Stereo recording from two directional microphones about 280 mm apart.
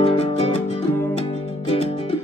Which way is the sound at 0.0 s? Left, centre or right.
Left.